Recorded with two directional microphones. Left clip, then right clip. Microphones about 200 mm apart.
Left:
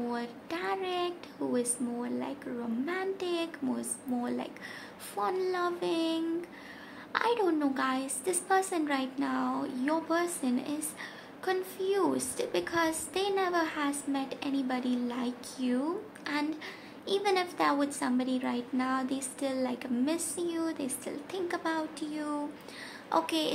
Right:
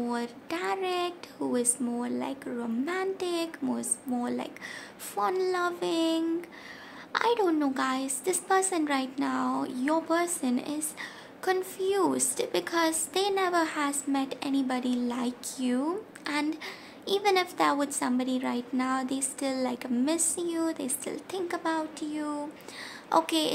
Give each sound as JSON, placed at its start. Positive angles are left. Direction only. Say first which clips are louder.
{"t": 0.1, "sound": "a child's voice", "louder": "right 3 dB", "side_deg": -20}